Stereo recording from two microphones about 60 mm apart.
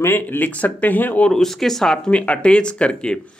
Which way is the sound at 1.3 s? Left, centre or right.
Centre.